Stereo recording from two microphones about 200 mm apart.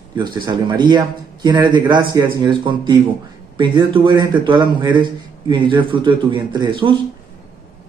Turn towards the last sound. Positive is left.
turn(degrees=-25)  # may be behind; listen again after turning